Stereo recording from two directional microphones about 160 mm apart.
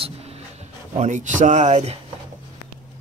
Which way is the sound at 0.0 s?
40° right (ahead or behind).